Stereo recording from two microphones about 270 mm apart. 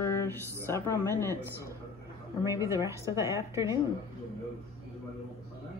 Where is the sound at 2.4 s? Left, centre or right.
Centre.